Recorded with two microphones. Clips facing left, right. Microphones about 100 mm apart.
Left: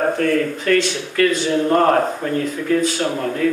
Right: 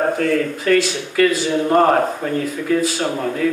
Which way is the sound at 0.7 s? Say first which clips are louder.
Right 1 dB; 10° right (ahead or behind).